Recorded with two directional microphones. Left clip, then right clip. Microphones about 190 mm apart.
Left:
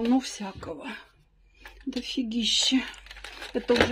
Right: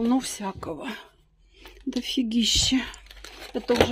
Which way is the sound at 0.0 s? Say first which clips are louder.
Right 1 dB; 20° right (ahead or behind).